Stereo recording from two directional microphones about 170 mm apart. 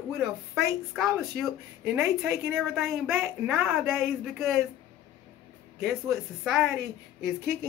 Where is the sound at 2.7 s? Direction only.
Centre (ahead or behind).